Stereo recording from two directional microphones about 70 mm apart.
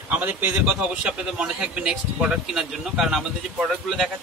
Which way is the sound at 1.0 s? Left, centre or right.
Centre.